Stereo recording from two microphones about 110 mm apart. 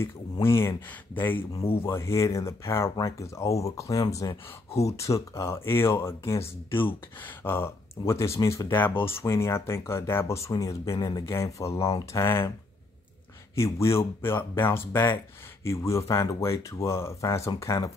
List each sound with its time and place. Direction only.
0.0 s speech: 25° left (ahead or behind)
1.6 s speech: 60° left (ahead or behind)
1.9 s speech: 25° left (ahead or behind)
13.6 s speech: 25° left (ahead or behind)